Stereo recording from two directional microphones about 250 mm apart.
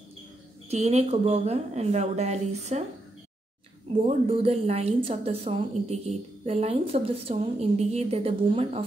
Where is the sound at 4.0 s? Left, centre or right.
Right.